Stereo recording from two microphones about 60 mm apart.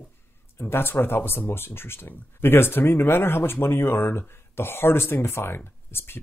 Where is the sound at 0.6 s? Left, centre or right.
Left.